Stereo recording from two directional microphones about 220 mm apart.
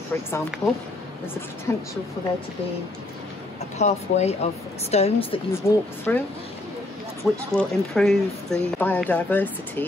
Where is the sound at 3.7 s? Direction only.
30° left (ahead or behind).